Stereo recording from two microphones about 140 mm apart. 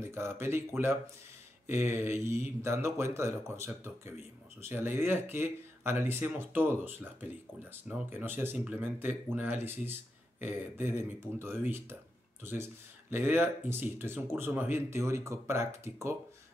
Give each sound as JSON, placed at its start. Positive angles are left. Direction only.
{"t": 0.0, "sound": "speech", "side_deg": -20}
{"t": 13.1, "sound": "speech", "side_deg": -15}